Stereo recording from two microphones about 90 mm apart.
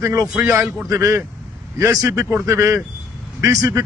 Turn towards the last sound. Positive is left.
turn(degrees=-40)  # may be behind; listen again after turning